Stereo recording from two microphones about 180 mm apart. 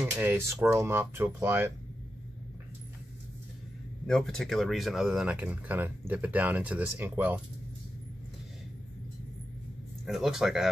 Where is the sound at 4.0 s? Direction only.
5° left (ahead or behind).